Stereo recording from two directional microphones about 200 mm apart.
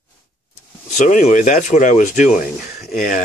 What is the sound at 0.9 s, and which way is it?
Speech, 40° left (ahead or behind).